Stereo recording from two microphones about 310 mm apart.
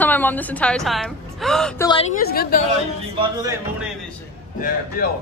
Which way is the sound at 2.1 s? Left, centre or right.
Left.